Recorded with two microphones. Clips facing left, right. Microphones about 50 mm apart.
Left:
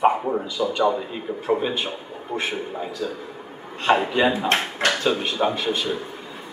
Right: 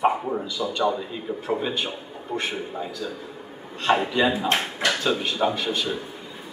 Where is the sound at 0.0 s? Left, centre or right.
Centre.